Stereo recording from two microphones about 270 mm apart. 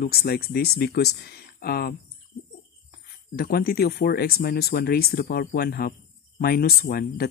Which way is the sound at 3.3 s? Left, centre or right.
Left.